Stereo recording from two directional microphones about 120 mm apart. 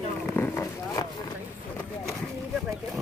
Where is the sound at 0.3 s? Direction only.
15° left (ahead or behind).